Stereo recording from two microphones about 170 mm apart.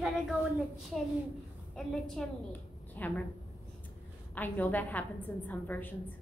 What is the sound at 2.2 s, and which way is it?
A woman's voice, 5° left (ahead or behind).